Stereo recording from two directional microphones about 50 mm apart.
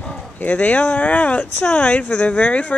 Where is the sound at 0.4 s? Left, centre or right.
Left.